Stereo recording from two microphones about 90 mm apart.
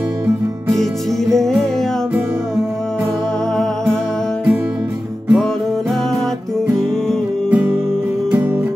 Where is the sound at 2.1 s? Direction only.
30° right (ahead or behind).